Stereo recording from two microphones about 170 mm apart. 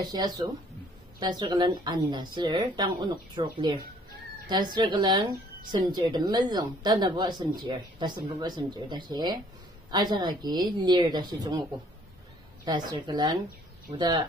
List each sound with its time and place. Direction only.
0.0 s a woman's voice: 25° right (ahead or behind)
12.6 s a woman's voice: 25° right (ahead or behind)